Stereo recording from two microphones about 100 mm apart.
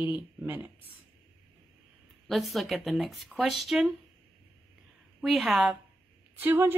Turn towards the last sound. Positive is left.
turn(degrees=-20)  # may be behind; listen again after turning